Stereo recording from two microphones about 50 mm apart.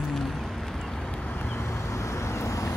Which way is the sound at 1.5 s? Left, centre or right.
Left.